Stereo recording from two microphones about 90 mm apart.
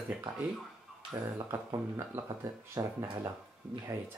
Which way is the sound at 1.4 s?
30° right (ahead or behind).